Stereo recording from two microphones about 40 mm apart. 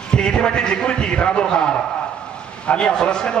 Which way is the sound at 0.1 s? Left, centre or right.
Left.